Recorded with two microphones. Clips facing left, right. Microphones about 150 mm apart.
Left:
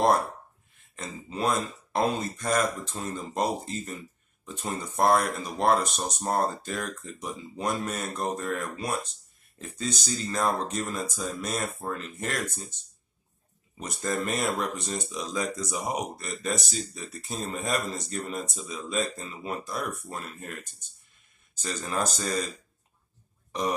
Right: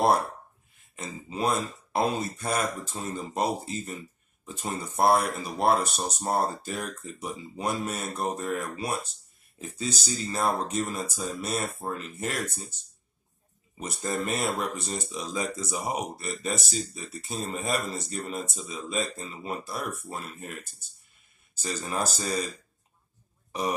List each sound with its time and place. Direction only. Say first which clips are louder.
0.0 s speech: even; 5° right (ahead or behind)
13.7 s speech: left 1 dB; centre (ahead or behind)
21.5 s speech: even; 5° right (ahead or behind)